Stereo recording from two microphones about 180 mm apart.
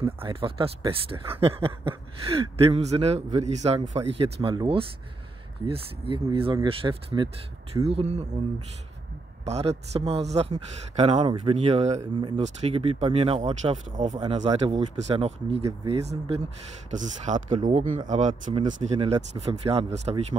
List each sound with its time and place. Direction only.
0.0 s speech: 30° right (ahead or behind)
9.4 s speech: 35° right (ahead or behind)
13.9 s speech: 40° right (ahead or behind)